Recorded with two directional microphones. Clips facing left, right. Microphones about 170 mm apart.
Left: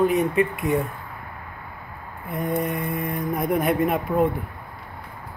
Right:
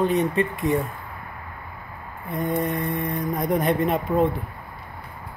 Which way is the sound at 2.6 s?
Centre (ahead or behind).